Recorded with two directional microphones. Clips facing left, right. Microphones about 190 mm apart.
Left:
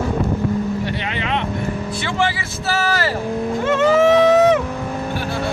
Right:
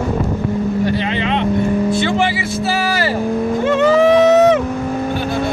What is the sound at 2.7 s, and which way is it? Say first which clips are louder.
Vehicle: even; 15° right (ahead or behind).